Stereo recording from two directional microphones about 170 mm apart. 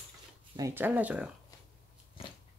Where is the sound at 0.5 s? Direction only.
15° right (ahead or behind).